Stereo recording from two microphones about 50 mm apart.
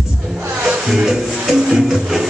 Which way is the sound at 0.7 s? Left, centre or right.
Centre.